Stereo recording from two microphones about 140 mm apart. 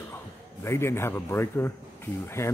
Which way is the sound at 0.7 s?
20° left (ahead or behind).